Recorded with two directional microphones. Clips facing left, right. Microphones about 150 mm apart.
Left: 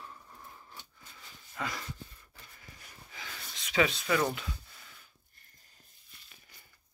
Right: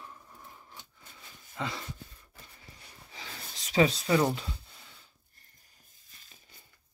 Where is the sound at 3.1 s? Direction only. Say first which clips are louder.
Right 1 dB; 30° right (ahead or behind).